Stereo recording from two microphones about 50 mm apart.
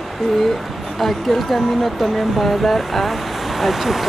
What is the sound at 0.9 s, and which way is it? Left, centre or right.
Speech, centre.